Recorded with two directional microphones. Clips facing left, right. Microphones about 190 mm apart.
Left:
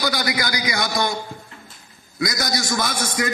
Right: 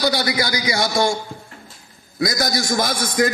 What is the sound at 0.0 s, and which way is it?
A man's voice, 25° right (ahead or behind).